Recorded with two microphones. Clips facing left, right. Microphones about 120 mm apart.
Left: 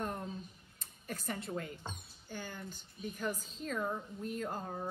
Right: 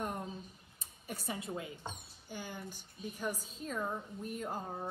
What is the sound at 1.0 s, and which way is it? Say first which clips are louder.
Speech: even; 10° right (ahead or behind).